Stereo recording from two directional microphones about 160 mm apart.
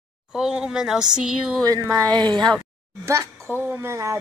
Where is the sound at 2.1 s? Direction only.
30° right (ahead or behind).